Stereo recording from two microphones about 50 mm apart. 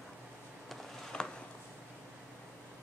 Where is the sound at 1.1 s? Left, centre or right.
Centre.